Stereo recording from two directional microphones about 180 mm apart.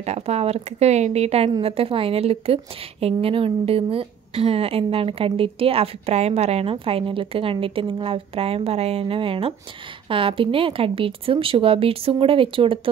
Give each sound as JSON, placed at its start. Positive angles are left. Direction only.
{"t": 0.0, "sound": "a woman's voice", "side_deg": -35}